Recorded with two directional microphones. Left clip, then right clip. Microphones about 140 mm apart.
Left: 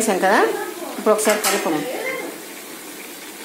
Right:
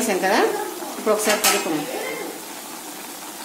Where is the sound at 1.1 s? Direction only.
30° left (ahead or behind).